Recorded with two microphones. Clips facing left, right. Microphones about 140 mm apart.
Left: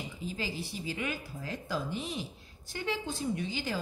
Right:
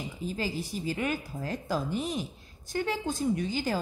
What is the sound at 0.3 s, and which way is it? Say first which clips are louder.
Speech: right 5 dB; 45° right (ahead or behind).